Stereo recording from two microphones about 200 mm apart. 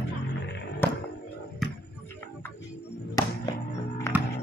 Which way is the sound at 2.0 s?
10° left (ahead or behind).